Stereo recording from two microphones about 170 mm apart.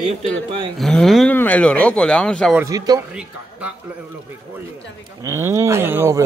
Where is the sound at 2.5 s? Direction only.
20° right (ahead or behind).